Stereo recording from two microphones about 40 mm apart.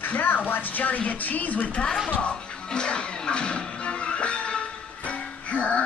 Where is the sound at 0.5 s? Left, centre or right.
Left.